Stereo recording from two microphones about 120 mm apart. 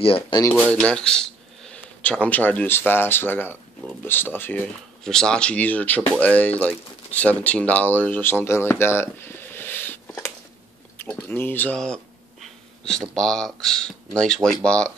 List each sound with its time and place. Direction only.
0.0 s speech: 50° left (ahead or behind)
0.4 s speech: 15° left (ahead or behind)
5.0 s speech: 5° left (ahead or behind)
11.7 s a sound: 5° left (ahead or behind)
13.1 s speech: 5° left (ahead or behind)